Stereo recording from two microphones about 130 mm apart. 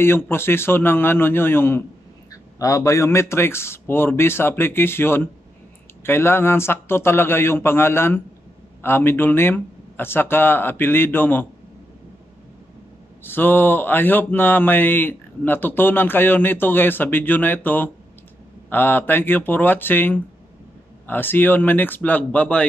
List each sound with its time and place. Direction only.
0.3 s speech: 20° left (ahead or behind)
13.2 s speech: 15° left (ahead or behind)